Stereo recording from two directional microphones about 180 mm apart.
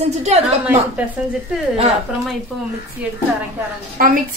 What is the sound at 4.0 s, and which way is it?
Speech, 55° right (ahead or behind).